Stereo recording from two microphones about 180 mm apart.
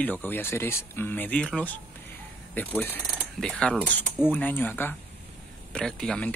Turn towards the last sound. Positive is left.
turn(degrees=5)  # may be behind; listen again after turning